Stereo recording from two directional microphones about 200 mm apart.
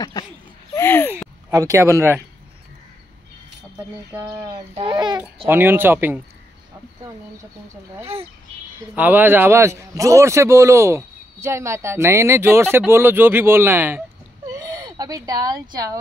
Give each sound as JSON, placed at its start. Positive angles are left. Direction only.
{"t": 0.2, "sound": "speech", "side_deg": 20}
{"t": 0.7, "sound": "a sound", "side_deg": 10}
{"t": 1.5, "sound": "speech", "side_deg": -15}
{"t": 4.4, "sound": "a child's voice", "side_deg": -20}
{"t": 8.0, "sound": "speech", "side_deg": -30}
{"t": 8.9, "sound": "a man's voice", "side_deg": -10}